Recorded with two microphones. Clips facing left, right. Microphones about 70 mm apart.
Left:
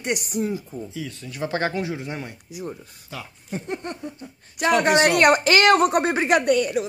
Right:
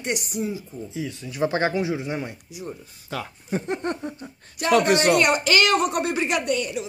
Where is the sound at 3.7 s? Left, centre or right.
Right.